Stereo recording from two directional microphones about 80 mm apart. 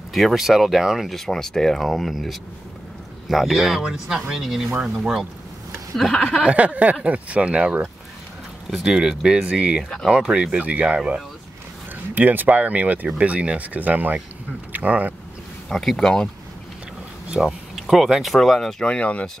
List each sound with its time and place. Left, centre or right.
0.1 s speech: centre
6.4 s speech: centre
12.1 s speech: right
15.7 s speech: centre
17.4 s speech: centre